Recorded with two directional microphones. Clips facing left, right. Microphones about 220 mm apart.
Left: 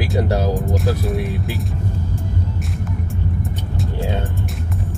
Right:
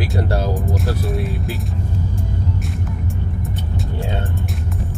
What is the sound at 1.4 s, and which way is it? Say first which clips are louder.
Music: left 1 dB; centre (ahead or behind).